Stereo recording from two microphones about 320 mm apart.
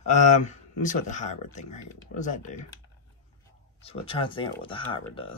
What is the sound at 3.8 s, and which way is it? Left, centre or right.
Speech, centre.